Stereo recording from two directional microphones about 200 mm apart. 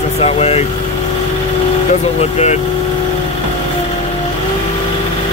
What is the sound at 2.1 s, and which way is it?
Speech, 35° left (ahead or behind).